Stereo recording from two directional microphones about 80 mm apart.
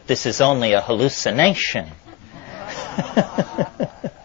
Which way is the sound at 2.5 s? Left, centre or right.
Left.